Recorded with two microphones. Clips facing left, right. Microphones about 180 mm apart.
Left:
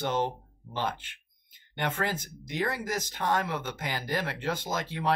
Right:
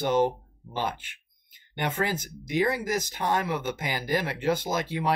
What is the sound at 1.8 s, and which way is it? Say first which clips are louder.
Speech: right 2 dB; 10° right (ahead or behind).